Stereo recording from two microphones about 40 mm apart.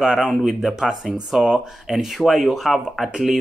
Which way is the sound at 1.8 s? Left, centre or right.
Centre.